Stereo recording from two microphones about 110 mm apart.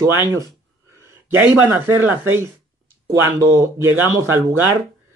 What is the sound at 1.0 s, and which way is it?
Speech, 20° right (ahead or behind).